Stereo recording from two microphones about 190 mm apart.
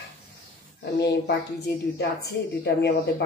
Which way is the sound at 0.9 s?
60° left (ahead or behind).